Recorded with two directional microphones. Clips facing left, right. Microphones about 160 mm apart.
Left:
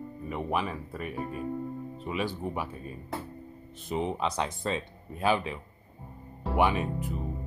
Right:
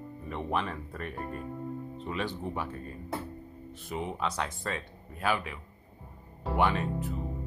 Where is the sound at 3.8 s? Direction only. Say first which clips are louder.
Left 4 dB; 20° left (ahead or behind).